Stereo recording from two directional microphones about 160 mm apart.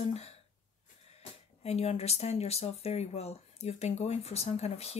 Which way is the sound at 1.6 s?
40° left (ahead or behind).